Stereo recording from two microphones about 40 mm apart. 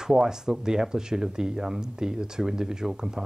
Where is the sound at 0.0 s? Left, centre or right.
Centre.